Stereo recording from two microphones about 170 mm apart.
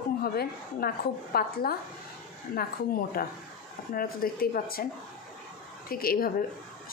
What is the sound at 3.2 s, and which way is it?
Speech, 60° left (ahead or behind).